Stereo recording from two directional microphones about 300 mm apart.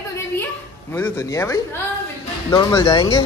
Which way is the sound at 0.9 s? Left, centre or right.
Centre.